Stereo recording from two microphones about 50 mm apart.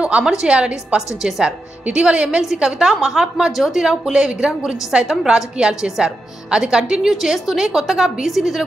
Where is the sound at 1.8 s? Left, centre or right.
Right.